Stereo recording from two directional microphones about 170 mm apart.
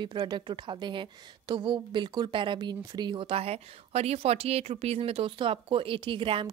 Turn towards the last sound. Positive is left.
turn(degrees=-30)  # may be behind; listen again after turning